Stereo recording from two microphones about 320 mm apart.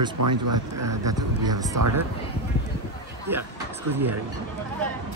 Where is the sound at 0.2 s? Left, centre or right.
Right.